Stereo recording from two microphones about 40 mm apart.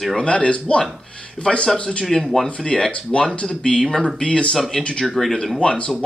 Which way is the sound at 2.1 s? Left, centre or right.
Centre.